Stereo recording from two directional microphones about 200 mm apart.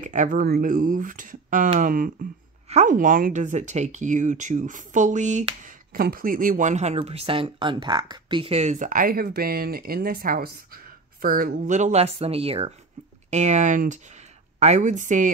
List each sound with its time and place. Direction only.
0.0 s speech: 40° right (ahead or behind)